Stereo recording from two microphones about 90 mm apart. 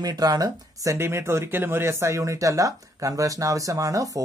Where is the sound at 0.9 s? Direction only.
30° right (ahead or behind).